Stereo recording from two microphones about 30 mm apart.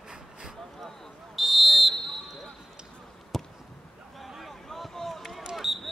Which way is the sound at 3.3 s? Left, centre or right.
Centre.